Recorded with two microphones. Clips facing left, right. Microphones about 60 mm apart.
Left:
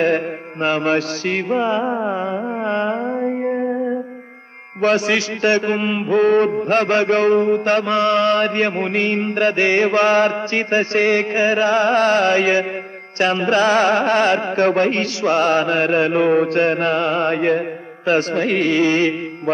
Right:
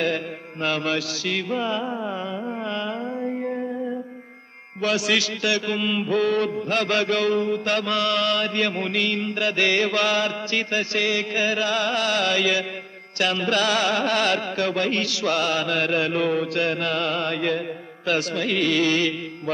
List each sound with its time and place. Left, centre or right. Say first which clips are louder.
0.0 s a man's voice: left 7 dB; left
2.6 s music: left 10 dB; left
4.8 s a man's voice: left 6 dB; left